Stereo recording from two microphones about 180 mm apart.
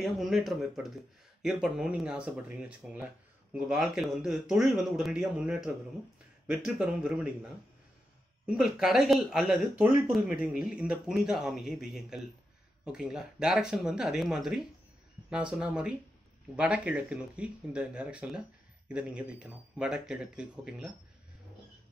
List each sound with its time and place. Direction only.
0.0 s speech: centre (ahead or behind)